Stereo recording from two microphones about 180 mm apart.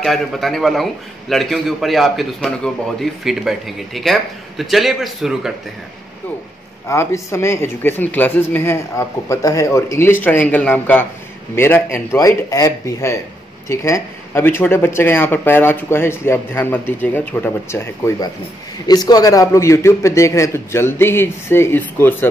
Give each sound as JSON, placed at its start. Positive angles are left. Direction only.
{"t": 0.0, "sound": "a man's voice", "side_deg": 0}
{"t": 6.9, "sound": "speech", "side_deg": 15}